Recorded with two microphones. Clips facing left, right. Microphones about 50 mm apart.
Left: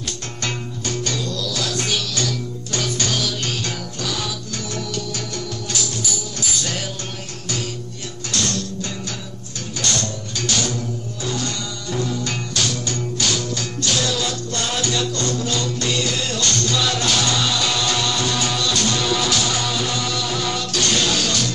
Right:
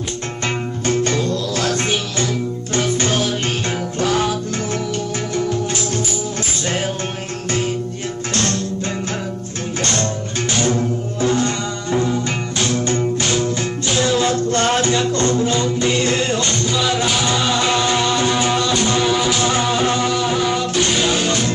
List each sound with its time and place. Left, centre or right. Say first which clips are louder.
0.8 s music: right 7 dB; right
8.3 s music: right 3 dB; right
9.8 s music: right 3 dB; right